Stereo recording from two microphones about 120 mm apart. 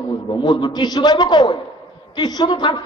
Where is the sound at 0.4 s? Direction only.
40° left (ahead or behind).